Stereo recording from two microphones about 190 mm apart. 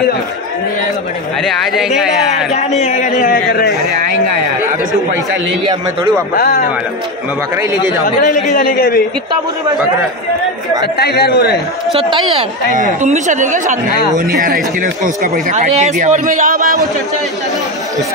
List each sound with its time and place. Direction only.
1.4 s speech: centre (ahead or behind)
2.8 s speech: 40° left (ahead or behind)
6.3 s speech: 55° left (ahead or behind)
8.5 s speech: 50° left (ahead or behind)
11.0 s speech: 55° left (ahead or behind)
12.1 s speech: 30° right (ahead or behind)
12.7 s speech: 40° right (ahead or behind)
15.3 s a man's voice: 40° right (ahead or behind)